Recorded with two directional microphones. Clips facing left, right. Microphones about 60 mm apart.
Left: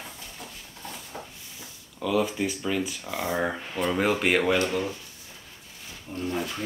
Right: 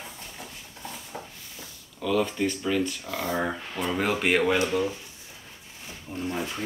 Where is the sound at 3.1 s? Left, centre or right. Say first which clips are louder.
Left 4 dB; centre.